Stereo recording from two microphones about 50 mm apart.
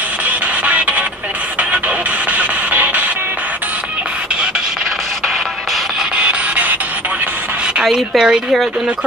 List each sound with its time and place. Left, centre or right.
0.3 s music: right
2.3 s music: right
6.1 s music: right
7.8 s speech: centre